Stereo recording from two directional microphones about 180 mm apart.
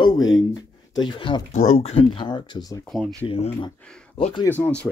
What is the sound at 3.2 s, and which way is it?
Speech, 30° left (ahead or behind).